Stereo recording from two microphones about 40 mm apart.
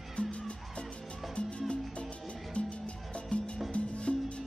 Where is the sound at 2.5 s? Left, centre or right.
Left.